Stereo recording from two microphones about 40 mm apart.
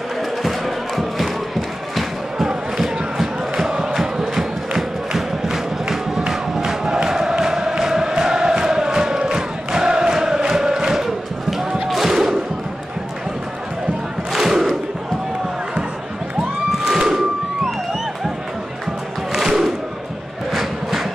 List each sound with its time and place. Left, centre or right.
0.4 s crowd: centre
11.9 s a sound: centre
14.3 s battle cry: centre
16.8 s a sound: centre
19.3 s battle cry: centre
20.5 s crowd: centre